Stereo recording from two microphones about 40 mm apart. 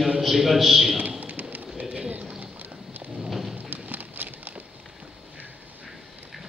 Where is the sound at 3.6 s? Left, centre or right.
Right.